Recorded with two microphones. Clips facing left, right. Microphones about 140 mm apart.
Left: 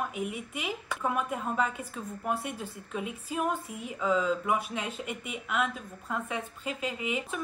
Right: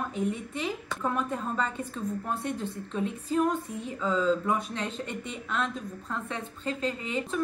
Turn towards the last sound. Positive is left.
turn(degrees=10)  # may be behind; listen again after turning